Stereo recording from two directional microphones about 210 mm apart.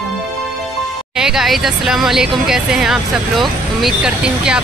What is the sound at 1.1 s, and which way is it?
Speech, centre (ahead or behind).